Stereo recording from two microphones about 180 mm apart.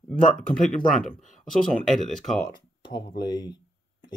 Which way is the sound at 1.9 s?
Centre (ahead or behind).